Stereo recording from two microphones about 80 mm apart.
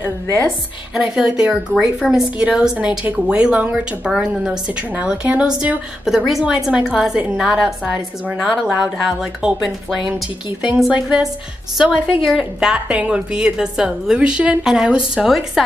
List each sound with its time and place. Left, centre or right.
0.9 s a woman's voice: centre
6.0 s a woman's voice: centre
10.9 s a woman's voice: centre